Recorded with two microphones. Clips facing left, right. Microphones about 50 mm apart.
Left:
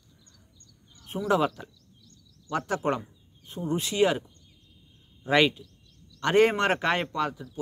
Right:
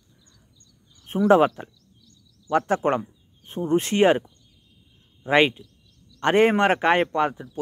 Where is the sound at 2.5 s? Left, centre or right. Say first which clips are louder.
Right 8 dB; right.